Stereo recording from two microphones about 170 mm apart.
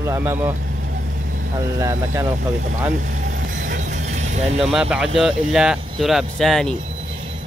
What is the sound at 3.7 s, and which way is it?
Music, 45° right (ahead or behind).